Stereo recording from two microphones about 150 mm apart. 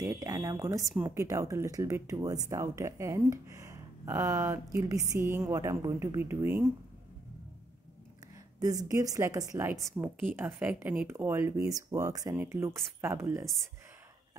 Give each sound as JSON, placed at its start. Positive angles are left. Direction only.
{"t": 0.0, "sound": "a woman's voice", "side_deg": -20}
{"t": 8.5, "sound": "a woman's voice", "side_deg": -25}